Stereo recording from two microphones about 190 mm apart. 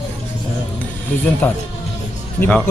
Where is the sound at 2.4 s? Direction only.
5° left (ahead or behind).